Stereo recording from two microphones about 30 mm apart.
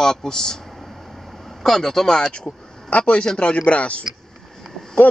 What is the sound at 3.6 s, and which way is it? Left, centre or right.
Speech, left.